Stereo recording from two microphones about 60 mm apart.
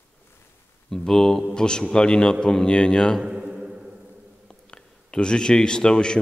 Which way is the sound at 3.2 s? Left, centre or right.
Centre.